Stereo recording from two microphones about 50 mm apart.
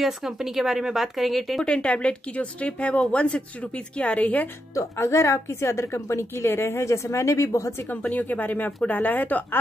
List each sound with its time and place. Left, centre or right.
0.0 s speech: centre
1.6 s speech: left
4.7 s a woman's voice: left
6.8 s speech: left
8.0 s speech: left